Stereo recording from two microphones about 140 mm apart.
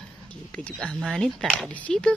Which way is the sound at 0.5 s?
5° left (ahead or behind).